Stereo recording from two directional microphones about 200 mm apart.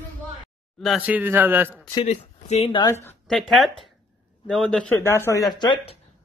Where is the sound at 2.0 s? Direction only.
35° left (ahead or behind).